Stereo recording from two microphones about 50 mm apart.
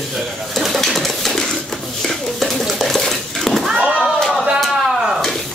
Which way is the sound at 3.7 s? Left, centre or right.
Centre.